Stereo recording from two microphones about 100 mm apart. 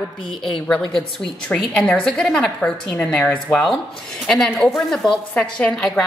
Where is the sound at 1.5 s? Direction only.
10° left (ahead or behind).